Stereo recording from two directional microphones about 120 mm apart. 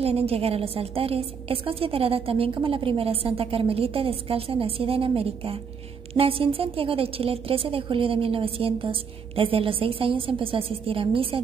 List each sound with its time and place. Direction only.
0.0 s a woman's voice: 55° right (ahead or behind)